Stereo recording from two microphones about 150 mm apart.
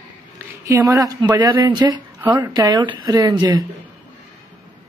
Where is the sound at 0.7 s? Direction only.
25° right (ahead or behind).